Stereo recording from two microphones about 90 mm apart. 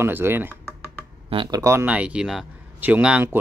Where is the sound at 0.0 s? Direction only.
25° right (ahead or behind).